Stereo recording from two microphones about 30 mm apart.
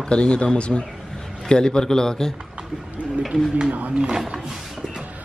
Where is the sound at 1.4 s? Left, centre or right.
Left.